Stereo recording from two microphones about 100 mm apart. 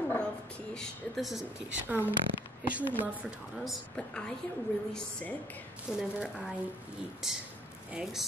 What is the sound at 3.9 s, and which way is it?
Speech, 10° left (ahead or behind).